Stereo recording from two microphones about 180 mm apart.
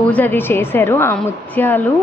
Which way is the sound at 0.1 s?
10° left (ahead or behind).